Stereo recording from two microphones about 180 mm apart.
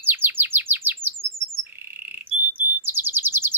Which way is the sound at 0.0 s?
10° right (ahead or behind).